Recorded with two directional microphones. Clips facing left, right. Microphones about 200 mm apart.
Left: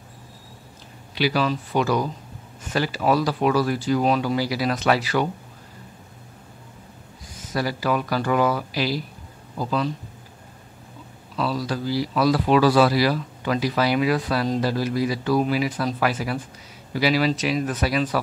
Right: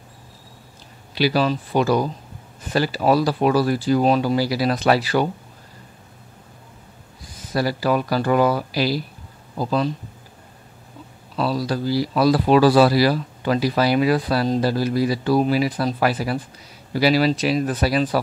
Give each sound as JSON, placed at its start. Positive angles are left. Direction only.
{"t": 1.1, "sound": "speech", "side_deg": -35}
{"t": 7.3, "sound": "speech", "side_deg": -35}
{"t": 11.3, "sound": "speech", "side_deg": -35}